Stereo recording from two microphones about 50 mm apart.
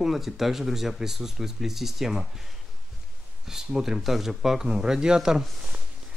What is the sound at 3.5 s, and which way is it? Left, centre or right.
Speech, centre.